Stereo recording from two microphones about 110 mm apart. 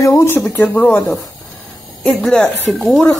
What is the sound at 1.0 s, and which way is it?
Speech, 35° left (ahead or behind).